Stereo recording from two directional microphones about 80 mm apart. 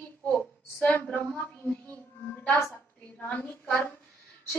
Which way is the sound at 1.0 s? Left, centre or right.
Centre.